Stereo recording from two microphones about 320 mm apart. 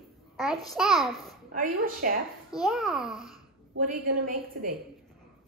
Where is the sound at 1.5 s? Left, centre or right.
Right.